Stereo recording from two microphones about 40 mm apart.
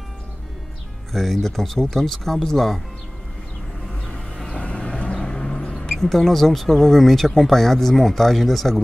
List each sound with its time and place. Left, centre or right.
1.1 s speech: centre
4.5 s vehicle: left
5.2 s vehicle: centre
5.8 s speech: centre